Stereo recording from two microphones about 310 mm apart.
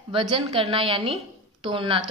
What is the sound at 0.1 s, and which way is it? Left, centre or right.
A woman's voice, centre.